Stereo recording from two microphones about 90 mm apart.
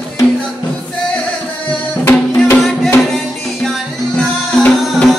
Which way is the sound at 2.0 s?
20° left (ahead or behind).